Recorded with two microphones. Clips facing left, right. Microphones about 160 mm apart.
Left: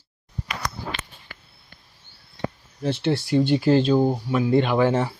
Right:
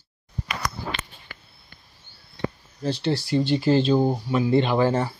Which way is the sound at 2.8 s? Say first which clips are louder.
Left 1 dB; 60° left (ahead or behind).